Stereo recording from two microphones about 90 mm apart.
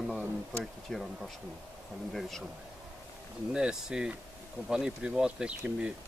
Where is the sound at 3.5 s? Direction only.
10° right (ahead or behind).